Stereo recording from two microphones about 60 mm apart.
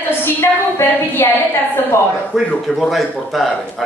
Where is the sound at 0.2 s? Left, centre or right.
Left.